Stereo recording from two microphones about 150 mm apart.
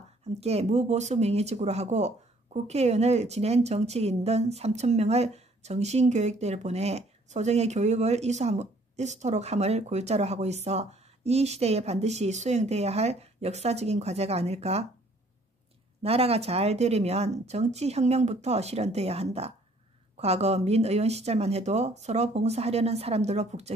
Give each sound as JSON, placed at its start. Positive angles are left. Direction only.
{"t": 0.4, "sound": "speech", "side_deg": -45}
{"t": 16.0, "sound": "speech", "side_deg": -40}